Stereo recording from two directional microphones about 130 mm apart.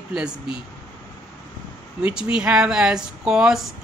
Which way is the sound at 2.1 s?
5° right (ahead or behind).